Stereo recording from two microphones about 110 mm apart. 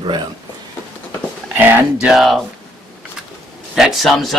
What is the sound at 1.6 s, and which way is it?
Speech, 20° right (ahead or behind).